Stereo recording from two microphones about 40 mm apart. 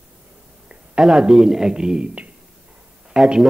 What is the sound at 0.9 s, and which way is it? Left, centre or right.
Speech, centre.